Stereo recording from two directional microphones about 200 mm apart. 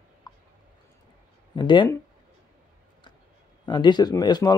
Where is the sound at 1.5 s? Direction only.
25° left (ahead or behind).